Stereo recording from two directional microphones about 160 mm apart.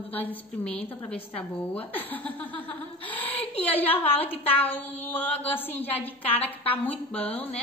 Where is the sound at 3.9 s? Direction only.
35° left (ahead or behind).